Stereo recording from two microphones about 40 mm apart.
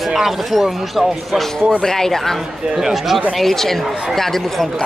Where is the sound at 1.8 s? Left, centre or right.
Centre.